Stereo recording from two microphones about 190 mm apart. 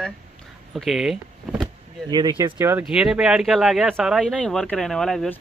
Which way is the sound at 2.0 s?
20° right (ahead or behind).